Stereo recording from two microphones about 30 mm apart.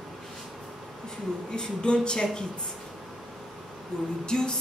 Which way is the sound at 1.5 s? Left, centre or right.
Left.